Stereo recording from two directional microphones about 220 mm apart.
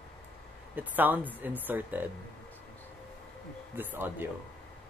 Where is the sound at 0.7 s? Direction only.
10° right (ahead or behind).